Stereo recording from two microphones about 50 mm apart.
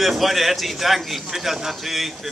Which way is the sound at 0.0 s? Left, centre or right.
Centre.